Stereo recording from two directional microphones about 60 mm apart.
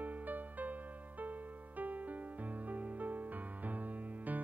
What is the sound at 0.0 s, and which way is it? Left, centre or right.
Music, right.